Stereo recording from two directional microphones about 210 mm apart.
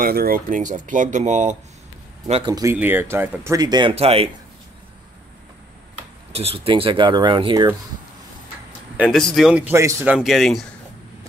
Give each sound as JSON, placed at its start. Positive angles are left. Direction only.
{"t": 0.0, "sound": "speech", "side_deg": -45}
{"t": 2.2, "sound": "speech", "side_deg": -25}
{"t": 6.3, "sound": "speech", "side_deg": -30}
{"t": 8.9, "sound": "a man's voice", "side_deg": 0}
{"t": 10.1, "sound": "speech", "side_deg": 0}